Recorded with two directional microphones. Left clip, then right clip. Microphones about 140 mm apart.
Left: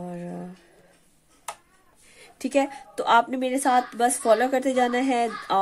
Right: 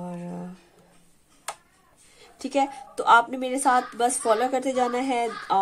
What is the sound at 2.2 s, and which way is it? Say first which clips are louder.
Speech: left 1 dB; 40° left (ahead or behind).